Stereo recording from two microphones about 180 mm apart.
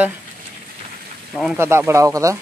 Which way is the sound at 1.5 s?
15° right (ahead or behind).